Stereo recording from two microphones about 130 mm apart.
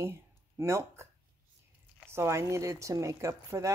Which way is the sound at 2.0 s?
20° right (ahead or behind).